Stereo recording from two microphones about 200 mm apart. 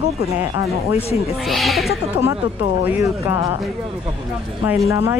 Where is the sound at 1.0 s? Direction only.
30° left (ahead or behind).